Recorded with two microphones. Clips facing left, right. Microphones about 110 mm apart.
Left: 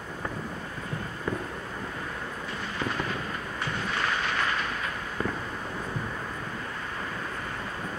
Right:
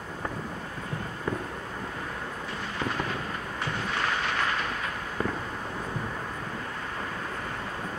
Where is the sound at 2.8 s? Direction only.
45° right (ahead or behind).